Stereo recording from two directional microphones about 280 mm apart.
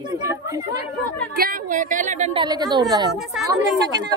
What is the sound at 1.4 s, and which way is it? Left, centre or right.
A woman's voice, right.